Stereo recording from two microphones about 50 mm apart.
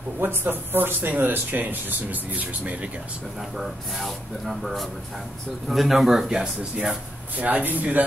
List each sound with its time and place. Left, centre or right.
0.2 s speech: right
3.5 s speech: centre
7.3 s speech: right